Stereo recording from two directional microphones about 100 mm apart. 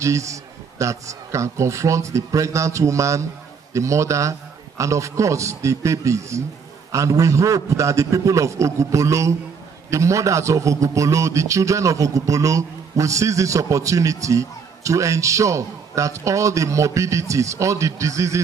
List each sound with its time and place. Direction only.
0.0 s a man's voice: 30° right (ahead or behind)